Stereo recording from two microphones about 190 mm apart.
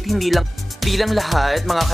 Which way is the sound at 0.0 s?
Centre (ahead or behind).